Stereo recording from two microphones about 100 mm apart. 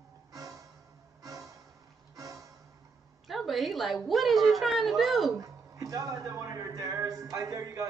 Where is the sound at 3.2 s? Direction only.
Centre (ahead or behind).